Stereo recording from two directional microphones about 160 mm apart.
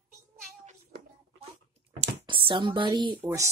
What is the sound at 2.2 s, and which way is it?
Speech, 30° right (ahead or behind).